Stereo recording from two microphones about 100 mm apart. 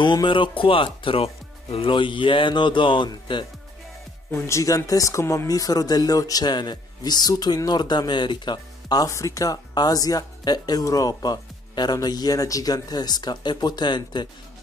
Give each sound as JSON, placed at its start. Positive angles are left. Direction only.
{"t": 0.0, "sound": "speech", "side_deg": 50}
{"t": 4.3, "sound": "speech", "side_deg": 25}